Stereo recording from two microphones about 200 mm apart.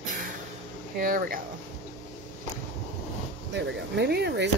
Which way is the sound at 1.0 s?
45° right (ahead or behind).